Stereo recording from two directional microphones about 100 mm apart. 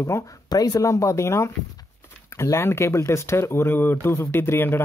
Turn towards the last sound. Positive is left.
turn(degrees=25)  # may be behind; listen again after turning